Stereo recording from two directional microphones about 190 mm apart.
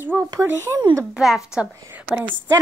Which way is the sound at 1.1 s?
Centre (ahead or behind).